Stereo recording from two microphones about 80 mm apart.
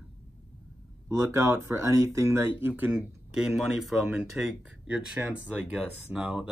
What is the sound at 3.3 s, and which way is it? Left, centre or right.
Speech, centre.